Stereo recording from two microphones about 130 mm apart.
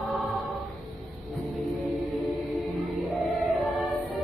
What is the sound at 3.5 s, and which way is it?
Choir, centre (ahead or behind).